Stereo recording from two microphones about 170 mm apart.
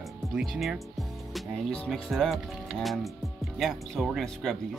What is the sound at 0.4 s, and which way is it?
Speech, centre (ahead or behind).